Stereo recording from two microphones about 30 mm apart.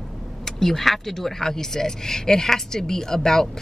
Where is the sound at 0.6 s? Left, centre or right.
Centre.